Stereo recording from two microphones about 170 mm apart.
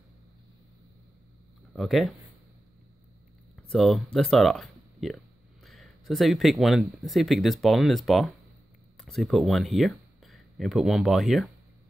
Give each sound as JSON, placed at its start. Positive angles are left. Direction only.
{"t": 1.8, "sound": "speech", "side_deg": 0}
{"t": 3.5, "sound": "speech", "side_deg": 0}